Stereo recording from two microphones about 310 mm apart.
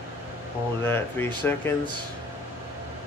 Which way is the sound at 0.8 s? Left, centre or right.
Centre.